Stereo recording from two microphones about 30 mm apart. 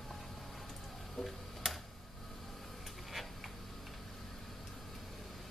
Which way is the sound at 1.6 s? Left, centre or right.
Centre.